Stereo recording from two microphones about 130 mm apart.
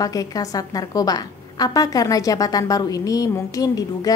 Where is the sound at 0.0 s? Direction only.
30° left (ahead or behind).